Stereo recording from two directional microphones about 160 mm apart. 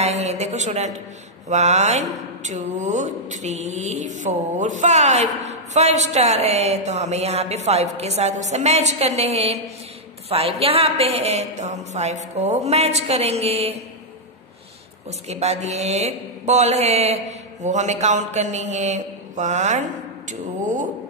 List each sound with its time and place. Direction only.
0.0 s a woman's voice: 45° right (ahead or behind)
15.0 s speech: 40° right (ahead or behind)